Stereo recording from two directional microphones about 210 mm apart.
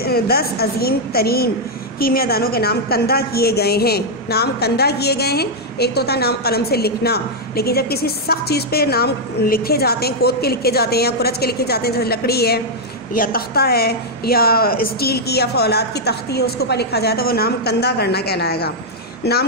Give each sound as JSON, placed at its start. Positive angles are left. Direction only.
{"t": 0.0, "sound": "a woman's voice", "side_deg": 45}